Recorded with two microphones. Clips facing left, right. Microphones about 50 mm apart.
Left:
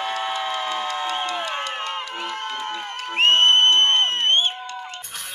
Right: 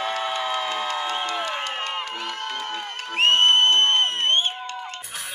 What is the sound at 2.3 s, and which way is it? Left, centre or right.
Crowd, left.